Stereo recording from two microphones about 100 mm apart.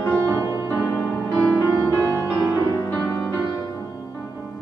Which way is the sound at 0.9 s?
20° left (ahead or behind).